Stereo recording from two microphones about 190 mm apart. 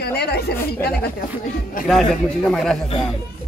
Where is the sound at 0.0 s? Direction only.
60° left (ahead or behind).